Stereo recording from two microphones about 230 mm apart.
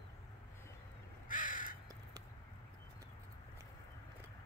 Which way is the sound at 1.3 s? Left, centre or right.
Left.